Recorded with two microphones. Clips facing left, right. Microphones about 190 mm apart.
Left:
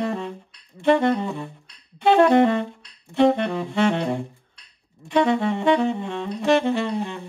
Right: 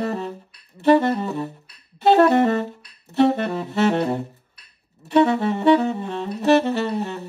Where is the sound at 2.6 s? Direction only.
5° right (ahead or behind).